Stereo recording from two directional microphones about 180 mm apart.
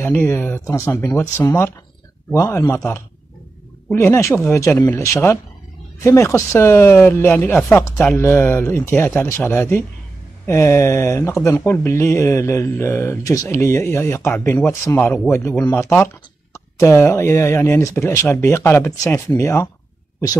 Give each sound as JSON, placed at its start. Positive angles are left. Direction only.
{"t": 0.0, "sound": "speech", "side_deg": 10}